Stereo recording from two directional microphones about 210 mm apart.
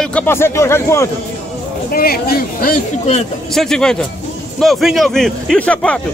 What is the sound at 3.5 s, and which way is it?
A man's voice, centre (ahead or behind).